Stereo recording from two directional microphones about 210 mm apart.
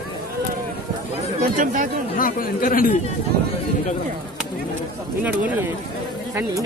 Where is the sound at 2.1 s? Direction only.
40° left (ahead or behind).